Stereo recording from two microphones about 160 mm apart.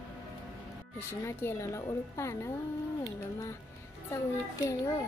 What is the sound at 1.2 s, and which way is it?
A woman's voice, 15° left (ahead or behind).